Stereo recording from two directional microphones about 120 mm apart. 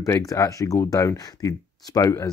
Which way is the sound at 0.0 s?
30° left (ahead or behind).